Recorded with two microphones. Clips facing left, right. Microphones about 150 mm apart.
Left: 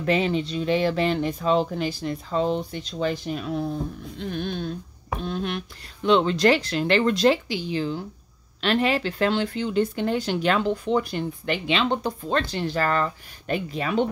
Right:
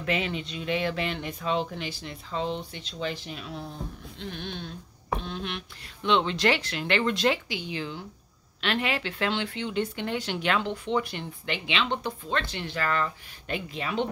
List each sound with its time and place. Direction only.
0.0 s speech: 35° left (ahead or behind)
4.2 s sheep: 45° left (ahead or behind)
6.0 s speech: 40° left (ahead or behind)